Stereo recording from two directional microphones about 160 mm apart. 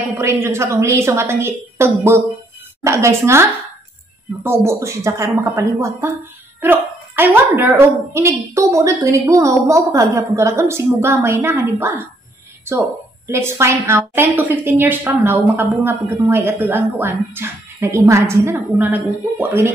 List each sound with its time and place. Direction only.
0.2 s a woman's voice: 15° right (ahead or behind)
13.3 s a woman's voice: 15° right (ahead or behind)